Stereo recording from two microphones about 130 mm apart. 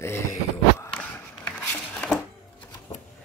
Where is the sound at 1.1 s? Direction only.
10° left (ahead or behind).